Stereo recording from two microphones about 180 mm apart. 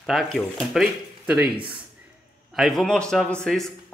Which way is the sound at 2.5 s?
Centre (ahead or behind).